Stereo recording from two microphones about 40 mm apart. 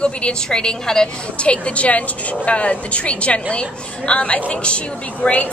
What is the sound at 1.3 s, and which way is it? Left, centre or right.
A woman's voice, left.